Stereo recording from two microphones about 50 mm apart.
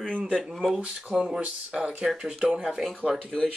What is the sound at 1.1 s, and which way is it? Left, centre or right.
Speech, centre.